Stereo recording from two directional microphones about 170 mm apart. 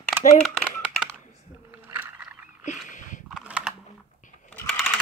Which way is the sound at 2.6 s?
45° left (ahead or behind).